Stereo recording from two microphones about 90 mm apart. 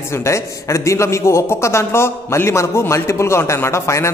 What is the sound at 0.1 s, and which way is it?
A man's voice, 30° left (ahead or behind).